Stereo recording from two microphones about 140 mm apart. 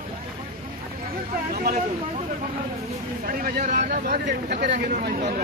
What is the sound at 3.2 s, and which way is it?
Vehicle, 90° right.